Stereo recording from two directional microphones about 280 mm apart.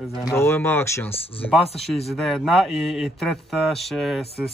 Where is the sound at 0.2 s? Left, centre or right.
Centre.